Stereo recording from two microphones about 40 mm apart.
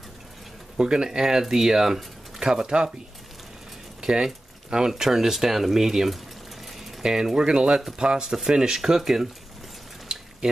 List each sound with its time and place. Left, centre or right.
0.7 s speech: centre
4.0 s speech: centre
10.1 s boiling: right